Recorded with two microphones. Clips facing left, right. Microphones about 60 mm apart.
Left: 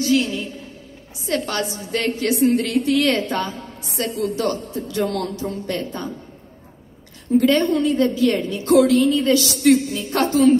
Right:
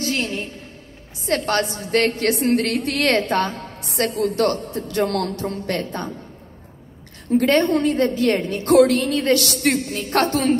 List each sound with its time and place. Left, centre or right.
0.0 s a sound: right
1.2 s a woman's voice: right
7.3 s a woman's voice: right